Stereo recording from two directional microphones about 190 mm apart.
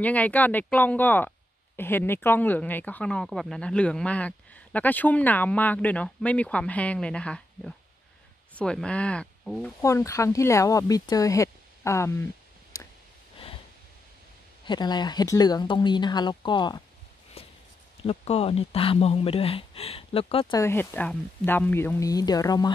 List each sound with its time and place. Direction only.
0.0 s speech: 10° left (ahead or behind)
9.8 s speech: 15° left (ahead or behind)
14.6 s speech: 25° left (ahead or behind)
18.0 s speech: 35° left (ahead or behind)
20.5 s speech: 15° left (ahead or behind)